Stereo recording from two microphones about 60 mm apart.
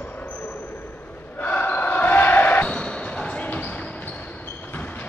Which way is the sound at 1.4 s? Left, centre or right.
Left.